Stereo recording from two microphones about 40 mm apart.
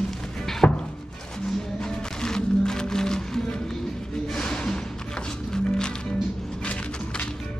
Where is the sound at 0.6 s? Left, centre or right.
Left.